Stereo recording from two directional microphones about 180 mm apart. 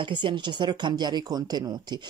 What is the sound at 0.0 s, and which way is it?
Speech, 25° right (ahead or behind).